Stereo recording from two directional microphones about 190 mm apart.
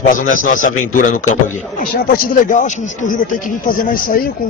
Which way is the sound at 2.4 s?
40° left (ahead or behind).